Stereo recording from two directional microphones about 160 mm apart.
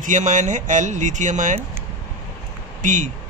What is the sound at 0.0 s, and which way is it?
Speech, 50° right (ahead or behind).